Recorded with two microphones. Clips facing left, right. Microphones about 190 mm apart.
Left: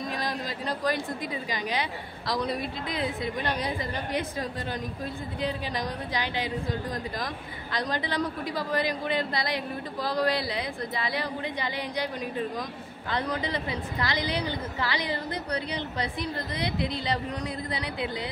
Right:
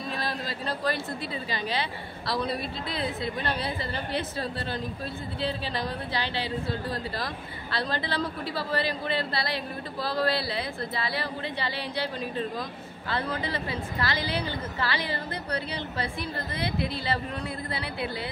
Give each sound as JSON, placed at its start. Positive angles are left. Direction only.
{"t": 0.1, "sound": "a woman's voice", "side_deg": 15}